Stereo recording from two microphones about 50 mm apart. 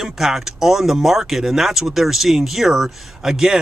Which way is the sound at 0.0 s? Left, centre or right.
Centre.